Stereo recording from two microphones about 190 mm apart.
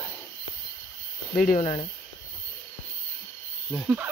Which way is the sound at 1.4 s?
45° left (ahead or behind).